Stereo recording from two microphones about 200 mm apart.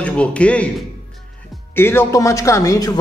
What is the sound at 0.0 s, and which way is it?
A man's voice, 5° left (ahead or behind).